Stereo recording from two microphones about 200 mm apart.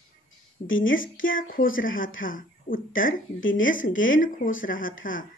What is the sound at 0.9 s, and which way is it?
Speech, 45° left (ahead or behind).